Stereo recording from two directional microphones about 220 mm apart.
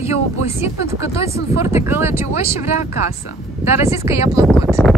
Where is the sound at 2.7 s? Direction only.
30° left (ahead or behind).